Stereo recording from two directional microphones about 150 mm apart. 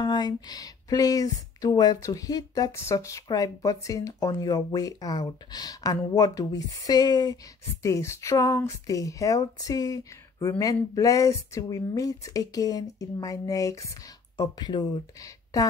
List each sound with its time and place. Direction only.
0.0 s speech: 30° left (ahead or behind)